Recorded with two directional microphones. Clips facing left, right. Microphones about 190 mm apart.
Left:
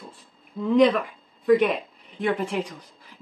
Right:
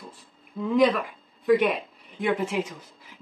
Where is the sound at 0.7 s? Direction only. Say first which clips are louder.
Left 3 dB; centre (ahead or behind).